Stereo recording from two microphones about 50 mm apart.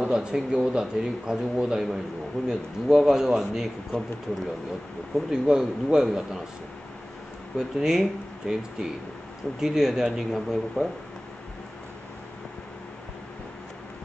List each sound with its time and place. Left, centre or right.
0.1 s a man's voice: centre
3.9 s speech: centre
5.3 s a man's voice: centre
7.5 s a man's voice: centre